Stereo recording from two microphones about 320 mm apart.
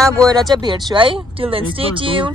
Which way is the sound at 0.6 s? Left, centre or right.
Centre.